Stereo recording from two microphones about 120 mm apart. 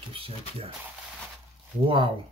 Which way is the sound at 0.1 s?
50° right (ahead or behind).